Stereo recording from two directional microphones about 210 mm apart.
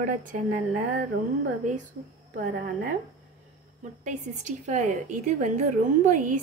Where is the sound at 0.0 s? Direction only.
40° right (ahead or behind).